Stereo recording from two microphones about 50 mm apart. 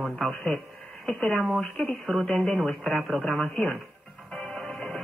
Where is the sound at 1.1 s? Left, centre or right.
Centre.